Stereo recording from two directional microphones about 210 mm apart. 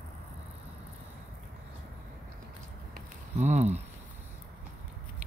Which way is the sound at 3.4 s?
35° right (ahead or behind).